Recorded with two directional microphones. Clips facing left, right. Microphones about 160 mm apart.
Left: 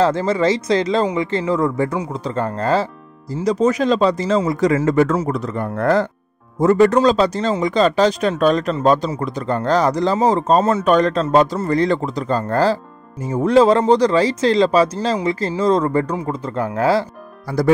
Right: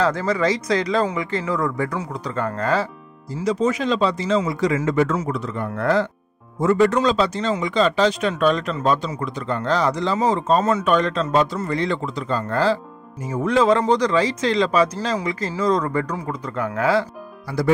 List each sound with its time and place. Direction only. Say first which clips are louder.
0.0 s speech: left 4 dB; 25° left (ahead or behind)
3.4 s speech: left 4 dB; 40° left (ahead or behind)